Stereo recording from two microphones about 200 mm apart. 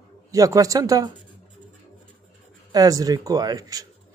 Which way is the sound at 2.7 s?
15° right (ahead or behind).